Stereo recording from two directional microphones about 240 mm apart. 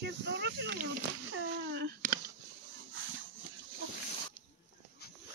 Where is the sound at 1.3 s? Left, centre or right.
Right.